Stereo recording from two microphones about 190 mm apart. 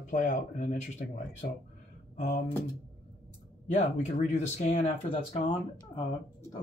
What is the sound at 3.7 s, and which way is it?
Speech, 35° left (ahead or behind).